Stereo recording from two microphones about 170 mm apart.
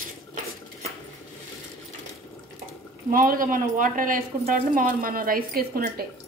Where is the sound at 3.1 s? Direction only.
55° right (ahead or behind).